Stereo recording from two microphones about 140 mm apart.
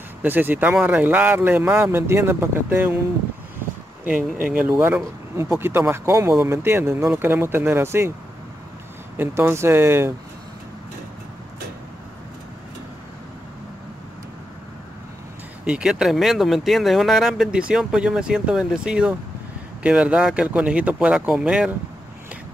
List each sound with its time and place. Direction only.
0.2 s speech: 15° right (ahead or behind)
4.5 s speech: 10° right (ahead or behind)
9.1 s speech: 15° right (ahead or behind)
15.6 s speech: 5° right (ahead or behind)